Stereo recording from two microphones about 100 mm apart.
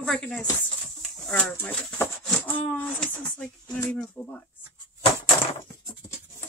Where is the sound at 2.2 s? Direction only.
15° left (ahead or behind).